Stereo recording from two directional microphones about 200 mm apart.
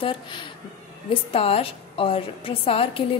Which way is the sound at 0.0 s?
25° left (ahead or behind).